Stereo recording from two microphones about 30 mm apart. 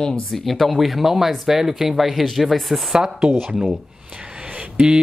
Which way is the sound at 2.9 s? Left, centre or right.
Right.